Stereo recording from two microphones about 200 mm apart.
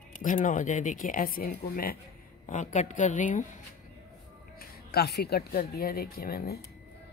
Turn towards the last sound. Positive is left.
turn(degrees=50)  # may be behind; listen again after turning